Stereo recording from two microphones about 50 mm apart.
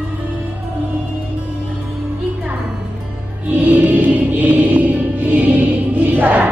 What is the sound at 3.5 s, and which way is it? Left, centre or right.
Music, right.